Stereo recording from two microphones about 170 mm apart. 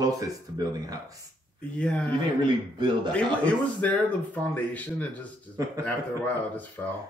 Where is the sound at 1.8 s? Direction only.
5° left (ahead or behind).